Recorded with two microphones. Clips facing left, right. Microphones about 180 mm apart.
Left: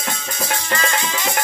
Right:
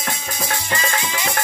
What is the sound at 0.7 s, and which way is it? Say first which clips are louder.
Music: left 2 dB; 15° right (ahead or behind).